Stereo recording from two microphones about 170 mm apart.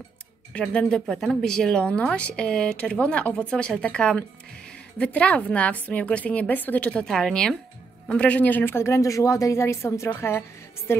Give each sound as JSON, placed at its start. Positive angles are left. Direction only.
{"t": 0.5, "sound": "a woman's voice", "side_deg": 5}